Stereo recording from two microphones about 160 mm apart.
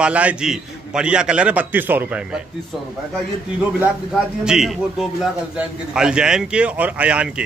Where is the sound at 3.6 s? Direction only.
10° right (ahead or behind).